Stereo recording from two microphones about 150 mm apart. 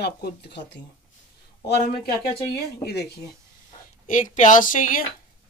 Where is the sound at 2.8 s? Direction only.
90° left.